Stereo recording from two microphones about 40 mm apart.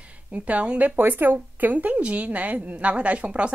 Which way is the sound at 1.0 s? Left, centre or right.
Right.